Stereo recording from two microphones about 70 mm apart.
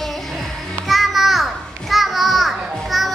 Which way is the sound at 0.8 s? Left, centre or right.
Centre.